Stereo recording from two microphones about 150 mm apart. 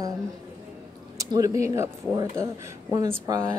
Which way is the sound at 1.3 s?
20° right (ahead or behind).